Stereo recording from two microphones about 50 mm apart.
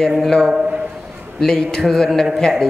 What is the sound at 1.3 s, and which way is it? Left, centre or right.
A man's voice, centre.